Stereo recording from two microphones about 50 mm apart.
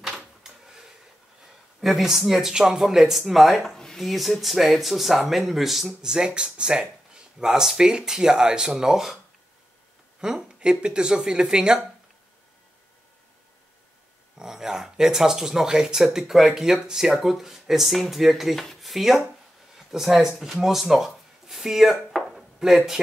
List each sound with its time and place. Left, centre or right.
1.8 s speech: centre
10.2 s speech: centre
14.4 s speech: centre
18.8 s a sound: centre
19.9 s speech: centre
22.1 s a sound: centre